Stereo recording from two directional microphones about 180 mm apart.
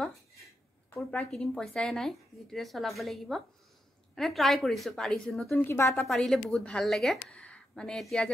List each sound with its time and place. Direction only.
0.0 s a sound: centre (ahead or behind)
0.9 s speech: 5° left (ahead or behind)
5.5 s a woman's voice: 15° left (ahead or behind)
6.0 s speech: centre (ahead or behind)